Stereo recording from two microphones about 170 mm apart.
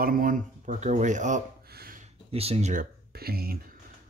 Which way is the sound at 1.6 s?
65° right (ahead or behind).